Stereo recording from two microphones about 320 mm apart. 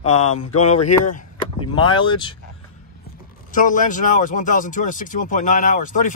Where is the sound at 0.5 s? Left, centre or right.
Centre.